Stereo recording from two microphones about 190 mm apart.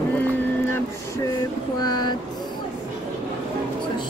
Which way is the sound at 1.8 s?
20° left (ahead or behind).